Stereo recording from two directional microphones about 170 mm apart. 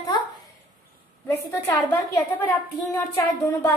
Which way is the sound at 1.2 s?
15° left (ahead or behind).